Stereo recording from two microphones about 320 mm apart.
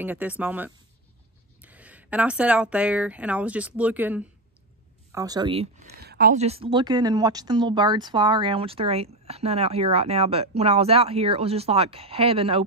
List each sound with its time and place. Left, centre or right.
0.0 s a woman's voice: centre
5.9 s speech: right